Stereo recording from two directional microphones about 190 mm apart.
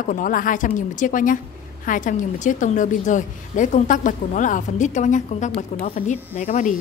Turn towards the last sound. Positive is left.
turn(degrees=40)  # may be behind; listen again after turning